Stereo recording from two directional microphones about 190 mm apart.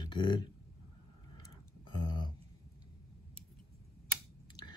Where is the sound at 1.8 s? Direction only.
25° left (ahead or behind).